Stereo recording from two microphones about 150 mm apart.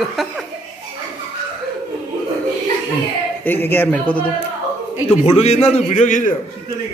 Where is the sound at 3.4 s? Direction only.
15° left (ahead or behind).